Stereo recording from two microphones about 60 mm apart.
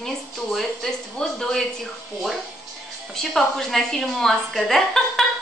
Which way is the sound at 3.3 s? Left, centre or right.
Centre.